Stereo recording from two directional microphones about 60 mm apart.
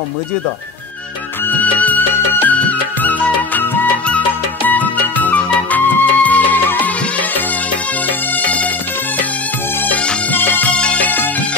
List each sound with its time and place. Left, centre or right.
1.5 s music: left
10.3 s music: left
10.7 s music: centre